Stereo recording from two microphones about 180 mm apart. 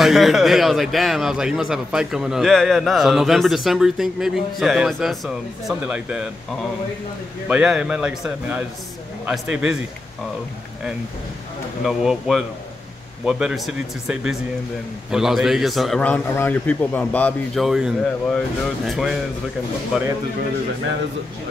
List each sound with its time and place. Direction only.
0.0 s a man's voice: centre (ahead or behind)
7.4 s a man's voice: 5° right (ahead or behind)
11.8 s a man's voice: centre (ahead or behind)